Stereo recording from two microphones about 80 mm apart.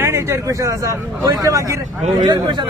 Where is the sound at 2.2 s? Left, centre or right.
Right.